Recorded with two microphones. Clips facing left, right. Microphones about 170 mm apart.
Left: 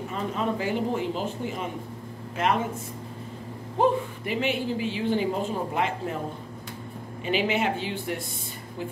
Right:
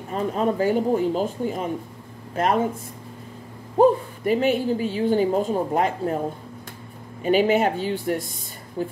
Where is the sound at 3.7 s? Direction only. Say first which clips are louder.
Right 6 dB; 40° right (ahead or behind).